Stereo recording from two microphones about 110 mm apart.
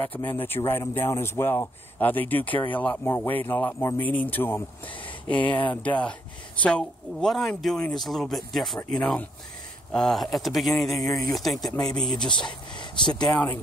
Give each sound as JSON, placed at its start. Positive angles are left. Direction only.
{"t": 0.2, "sound": "a man's voice", "side_deg": 20}
{"t": 12.4, "sound": "speech", "side_deg": 45}